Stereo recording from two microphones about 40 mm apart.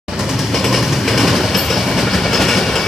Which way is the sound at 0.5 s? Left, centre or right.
Centre.